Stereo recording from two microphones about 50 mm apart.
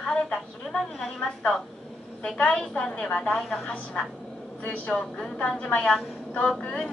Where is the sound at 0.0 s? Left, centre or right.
Centre.